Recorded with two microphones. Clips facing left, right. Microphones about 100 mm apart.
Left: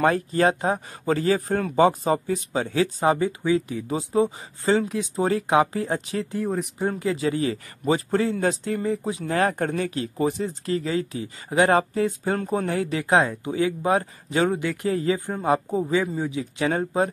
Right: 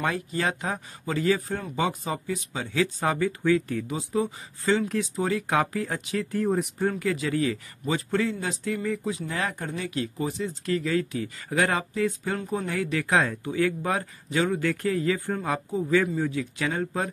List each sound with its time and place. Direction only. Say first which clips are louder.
0.0 s speech: left 7 dB; 45° left (ahead or behind); by 3.8 s 15° left (ahead or behind)
3.9 s speech: left 7 dB; 30° left (ahead or behind)
6.4 s speech: right 3 dB; centre (ahead or behind)
6.9 s speech: left 3 dB; 25° left (ahead or behind)
7.5 s speech: left 5 dB; 40° left (ahead or behind)
9.2 s speech: left 8 dB; 50° left (ahead or behind)
9.8 s speech: left 5 dB; 35° left (ahead or behind); by 15.4 s 20° left (ahead or behind)
15.4 s speech: left 6 dB; 30° left (ahead or behind)
15.9 s speech: right 3 dB; 20° left (ahead or behind)